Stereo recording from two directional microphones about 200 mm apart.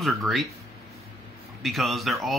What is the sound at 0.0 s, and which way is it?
Speech, centre (ahead or behind).